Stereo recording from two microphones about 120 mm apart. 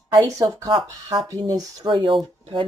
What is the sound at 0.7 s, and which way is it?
Speech, 40° right (ahead or behind).